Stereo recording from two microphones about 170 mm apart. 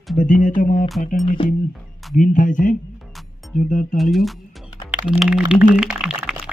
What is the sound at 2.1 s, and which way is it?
Speech, 50° left (ahead or behind).